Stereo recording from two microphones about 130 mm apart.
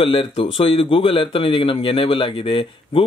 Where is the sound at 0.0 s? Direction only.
40° left (ahead or behind).